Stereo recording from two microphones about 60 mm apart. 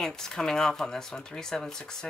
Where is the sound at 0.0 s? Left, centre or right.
Centre.